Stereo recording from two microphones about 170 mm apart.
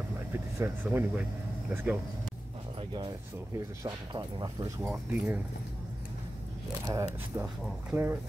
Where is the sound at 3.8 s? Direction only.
25° right (ahead or behind).